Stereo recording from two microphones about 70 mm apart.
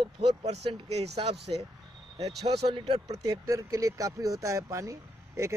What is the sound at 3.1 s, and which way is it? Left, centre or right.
Speech, right.